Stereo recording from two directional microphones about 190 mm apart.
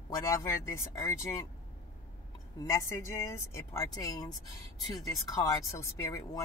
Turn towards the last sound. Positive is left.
turn(degrees=15)  # may be behind; listen again after turning